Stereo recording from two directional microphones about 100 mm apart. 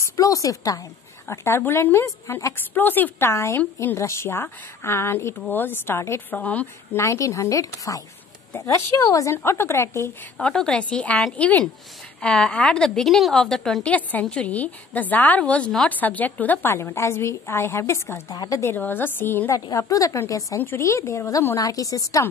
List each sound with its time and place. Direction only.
0.0 s a woman's voice: 30° left (ahead or behind); by 7.0 s 15° left (ahead or behind)
7.0 s a woman's voice: 30° left (ahead or behind)
10.3 s a woman's voice: 5° left (ahead or behind); by 18.2 s 25° left (ahead or behind)
18.3 s speech: 40° left (ahead or behind)
18.6 s a woman's voice: 20° left (ahead or behind)
19.7 s a woman's voice: 35° left (ahead or behind)